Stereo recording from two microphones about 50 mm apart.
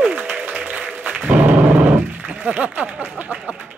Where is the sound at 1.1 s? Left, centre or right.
Right.